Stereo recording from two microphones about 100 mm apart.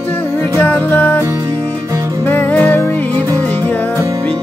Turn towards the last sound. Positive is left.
turn(degrees=15)  # may be behind; listen again after turning